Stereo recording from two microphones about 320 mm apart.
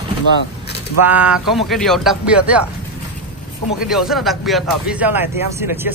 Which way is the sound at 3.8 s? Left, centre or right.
Centre.